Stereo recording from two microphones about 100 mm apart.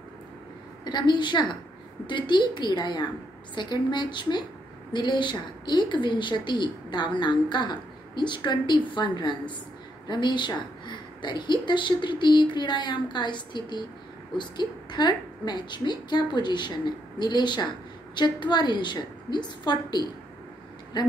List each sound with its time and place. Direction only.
0.8 s a woman's voice: 50° left (ahead or behind)